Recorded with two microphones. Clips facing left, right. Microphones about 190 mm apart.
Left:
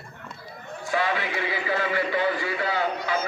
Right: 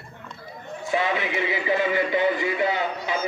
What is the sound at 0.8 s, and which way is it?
A man's voice, 20° right (ahead or behind).